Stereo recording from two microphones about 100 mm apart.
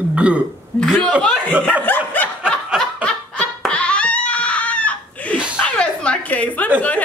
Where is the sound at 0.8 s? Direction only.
5° left (ahead or behind).